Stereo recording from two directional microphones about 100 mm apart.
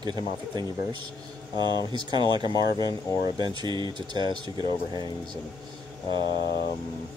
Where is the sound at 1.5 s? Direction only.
45° right (ahead or behind).